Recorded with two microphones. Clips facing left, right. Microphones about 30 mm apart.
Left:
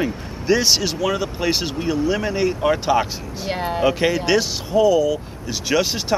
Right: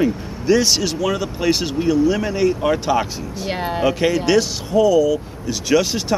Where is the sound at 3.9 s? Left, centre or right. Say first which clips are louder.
Right 1 dB; centre.